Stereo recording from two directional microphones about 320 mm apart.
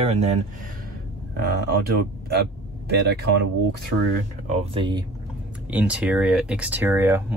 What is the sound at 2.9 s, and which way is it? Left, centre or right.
Speech, right.